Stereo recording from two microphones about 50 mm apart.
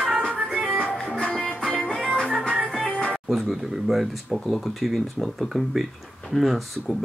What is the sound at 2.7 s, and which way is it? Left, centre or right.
Music, left.